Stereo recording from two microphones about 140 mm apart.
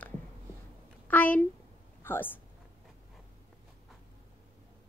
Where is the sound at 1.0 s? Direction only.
10° left (ahead or behind).